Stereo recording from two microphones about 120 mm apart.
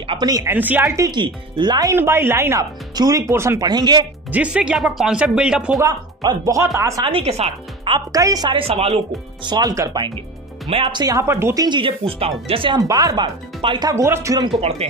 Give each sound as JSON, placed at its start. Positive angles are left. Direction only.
{"t": 0.2, "sound": "speech", "side_deg": -30}
{"t": 0.5, "sound": "speech", "side_deg": -15}
{"t": 1.1, "sound": "speech", "side_deg": -40}
{"t": 1.9, "sound": "speech", "side_deg": -20}
{"t": 4.3, "sound": "speech", "side_deg": -10}
{"t": 5.8, "sound": "speech", "side_deg": -30}
{"t": 7.1, "sound": "speech", "side_deg": -55}
{"t": 7.9, "sound": "speech", "side_deg": -30}
{"t": 9.4, "sound": "speech", "side_deg": -35}
{"t": 11.6, "sound": "speech", "side_deg": -45}
{"t": 12.7, "sound": "speech", "side_deg": -30}
{"t": 14.8, "sound": "speech", "side_deg": -60}